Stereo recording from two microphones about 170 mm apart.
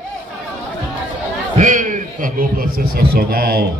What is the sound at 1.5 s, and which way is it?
A man's voice, 50° right (ahead or behind).